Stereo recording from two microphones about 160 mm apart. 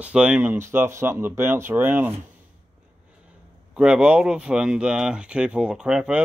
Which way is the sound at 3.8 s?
5° right (ahead or behind).